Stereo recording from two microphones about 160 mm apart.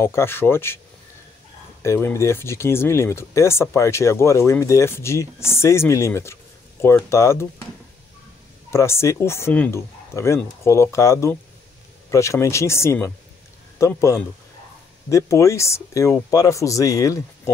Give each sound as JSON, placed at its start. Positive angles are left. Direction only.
{"t": 0.0, "sound": "speech", "side_deg": 15}
{"t": 1.8, "sound": "speech", "side_deg": 15}
{"t": 8.6, "sound": "speech", "side_deg": 15}